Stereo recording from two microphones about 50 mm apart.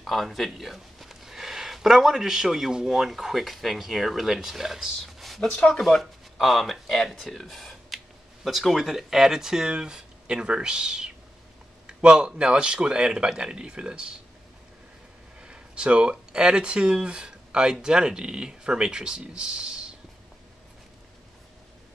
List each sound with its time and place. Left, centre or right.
0.0 s speech: centre
15.4 s speech: centre